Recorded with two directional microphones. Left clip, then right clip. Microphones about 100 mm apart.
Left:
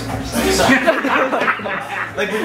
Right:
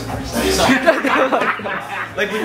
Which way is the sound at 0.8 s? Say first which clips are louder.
Right 1 dB; 10° right (ahead or behind).